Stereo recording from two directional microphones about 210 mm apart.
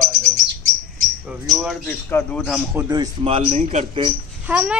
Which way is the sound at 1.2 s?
Centre (ahead or behind).